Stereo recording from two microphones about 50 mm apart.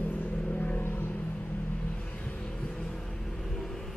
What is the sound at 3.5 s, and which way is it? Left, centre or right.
Vehicle, centre.